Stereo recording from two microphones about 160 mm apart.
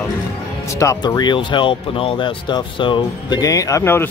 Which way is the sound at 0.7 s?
20° left (ahead or behind).